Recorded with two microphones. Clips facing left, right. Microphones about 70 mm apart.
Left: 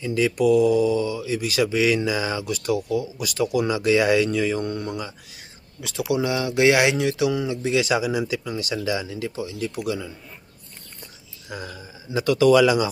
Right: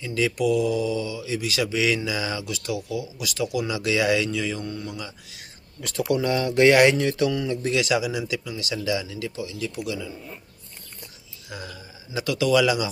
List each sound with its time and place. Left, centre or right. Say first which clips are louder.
0.0 s speech: left 3 dB; left
5.8 s speech: even; centre
7.8 s speech: left 2 dB; left
9.8 s speech: left 4 dB; left
11.5 s speech: left 3 dB; left